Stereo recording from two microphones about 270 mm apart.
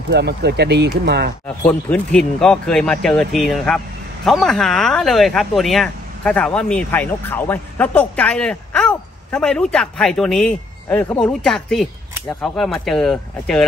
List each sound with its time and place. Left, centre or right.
0.1 s speech: right
1.6 s speech: centre